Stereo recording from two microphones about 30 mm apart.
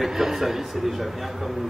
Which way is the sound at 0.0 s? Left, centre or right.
Centre.